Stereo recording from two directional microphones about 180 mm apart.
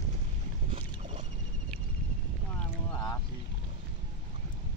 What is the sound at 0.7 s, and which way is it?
Boat, 30° right (ahead or behind).